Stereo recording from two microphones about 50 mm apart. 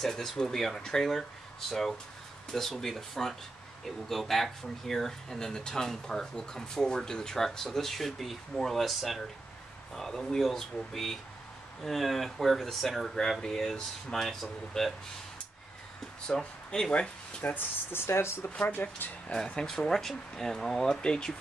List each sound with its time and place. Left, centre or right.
0.0 s speech: centre
16.3 s speech: centre
17.4 s speech: left
18.0 s speech: left
18.6 s speech: left
19.3 s speech: centre